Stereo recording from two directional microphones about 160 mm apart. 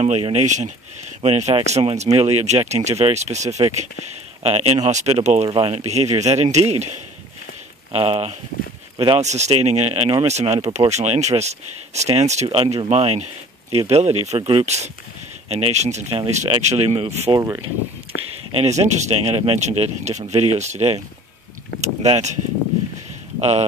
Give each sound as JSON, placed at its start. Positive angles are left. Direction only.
{"t": 0.0, "sound": "speech", "side_deg": -40}
{"t": 7.9, "sound": "speech", "side_deg": -35}
{"t": 9.2, "sound": "speech", "side_deg": -45}
{"t": 17.3, "sound": "speech", "side_deg": -20}
{"t": 18.1, "sound": "speech", "side_deg": 90}
{"t": 18.5, "sound": "speech", "side_deg": -45}